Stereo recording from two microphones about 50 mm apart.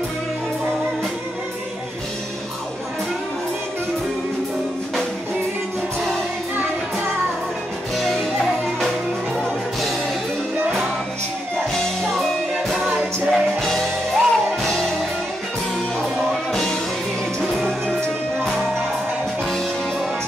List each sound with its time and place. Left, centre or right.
7.9 s music: centre
11.5 s music: centre
16.5 s music: centre
17.8 s music: centre